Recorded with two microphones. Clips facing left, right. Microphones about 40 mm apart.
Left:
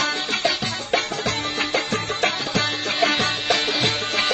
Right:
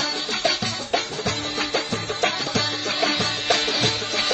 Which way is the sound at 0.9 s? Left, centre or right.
Left.